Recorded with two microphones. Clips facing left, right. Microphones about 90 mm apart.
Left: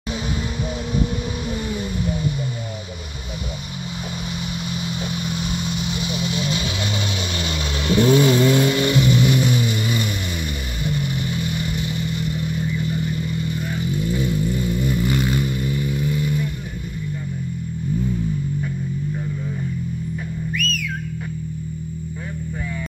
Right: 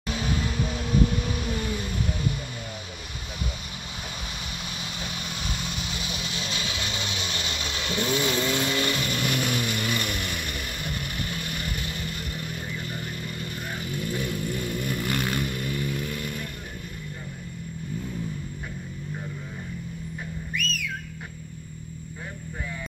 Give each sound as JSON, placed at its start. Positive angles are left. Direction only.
{"t": 5.3, "sound": "vehicle", "side_deg": 15}
{"t": 6.0, "sound": "vehicle", "side_deg": -35}
{"t": 7.4, "sound": "vehicle", "side_deg": 30}
{"t": 12.1, "sound": "vehicle", "side_deg": -45}
{"t": 13.8, "sound": "vehicle", "side_deg": 15}